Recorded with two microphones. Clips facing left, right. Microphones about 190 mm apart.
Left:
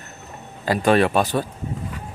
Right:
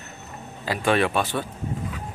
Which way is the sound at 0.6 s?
45° left (ahead or behind).